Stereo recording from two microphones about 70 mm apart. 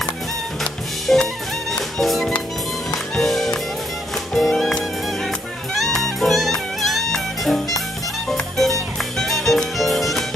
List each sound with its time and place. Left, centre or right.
1.0 s music: centre